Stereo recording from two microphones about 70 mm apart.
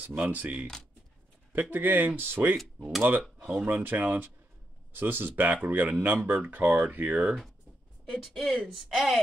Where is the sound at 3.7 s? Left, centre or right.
Right.